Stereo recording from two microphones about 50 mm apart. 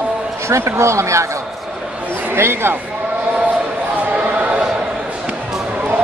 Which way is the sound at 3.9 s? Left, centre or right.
Right.